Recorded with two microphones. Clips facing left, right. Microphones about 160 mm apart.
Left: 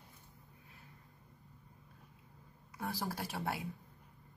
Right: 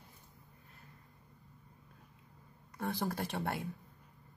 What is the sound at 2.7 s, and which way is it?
Speech, 5° left (ahead or behind).